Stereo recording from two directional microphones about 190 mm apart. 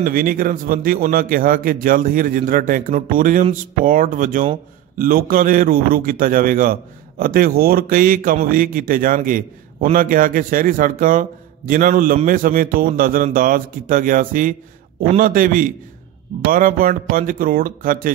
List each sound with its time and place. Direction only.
0.0 s a man's voice: 50° right (ahead or behind)